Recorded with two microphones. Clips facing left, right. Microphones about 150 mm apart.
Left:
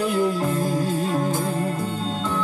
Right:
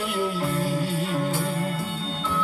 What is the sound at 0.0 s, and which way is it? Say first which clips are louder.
Music: left 5 dB; 40° left (ahead or behind).